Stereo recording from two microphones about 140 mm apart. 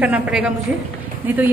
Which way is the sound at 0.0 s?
5° right (ahead or behind).